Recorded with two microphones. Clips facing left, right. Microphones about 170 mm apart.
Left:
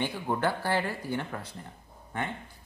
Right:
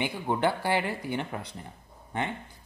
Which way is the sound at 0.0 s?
15° right (ahead or behind).